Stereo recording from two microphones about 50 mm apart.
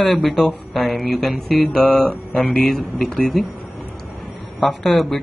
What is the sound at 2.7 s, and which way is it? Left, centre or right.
Speech, centre.